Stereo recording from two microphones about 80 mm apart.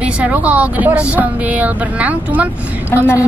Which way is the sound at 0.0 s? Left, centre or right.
Centre.